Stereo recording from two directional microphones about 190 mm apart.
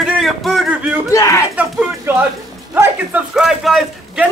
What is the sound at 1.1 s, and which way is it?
Speech, 15° left (ahead or behind).